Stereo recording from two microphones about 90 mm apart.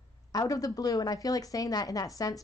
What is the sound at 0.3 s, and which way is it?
A woman's voice, 40° left (ahead or behind).